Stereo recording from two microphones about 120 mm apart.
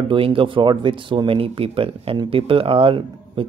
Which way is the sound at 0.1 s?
45° right (ahead or behind).